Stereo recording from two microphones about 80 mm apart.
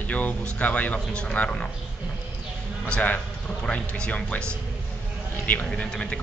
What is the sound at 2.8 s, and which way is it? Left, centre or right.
Speech, centre.